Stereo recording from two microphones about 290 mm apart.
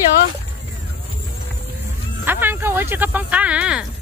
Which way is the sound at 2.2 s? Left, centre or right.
Centre.